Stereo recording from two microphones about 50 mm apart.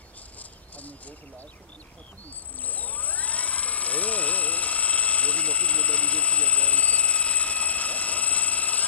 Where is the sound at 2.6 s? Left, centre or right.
Left.